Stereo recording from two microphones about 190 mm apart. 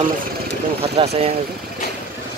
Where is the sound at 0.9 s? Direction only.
30° right (ahead or behind).